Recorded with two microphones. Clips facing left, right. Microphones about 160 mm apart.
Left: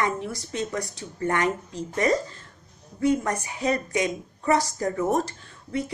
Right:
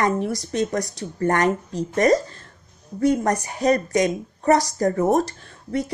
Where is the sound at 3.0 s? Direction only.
40° right (ahead or behind).